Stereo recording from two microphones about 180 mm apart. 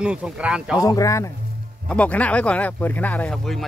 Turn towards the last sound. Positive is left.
turn(degrees=5)  # may be behind; listen again after turning